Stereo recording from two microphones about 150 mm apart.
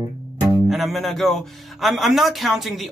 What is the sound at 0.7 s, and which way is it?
Speech, centre (ahead or behind).